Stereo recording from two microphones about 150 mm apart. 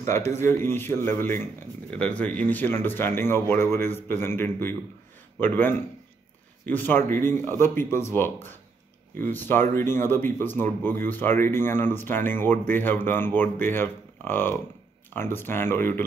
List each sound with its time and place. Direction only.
0.0 s speech: 15° left (ahead or behind)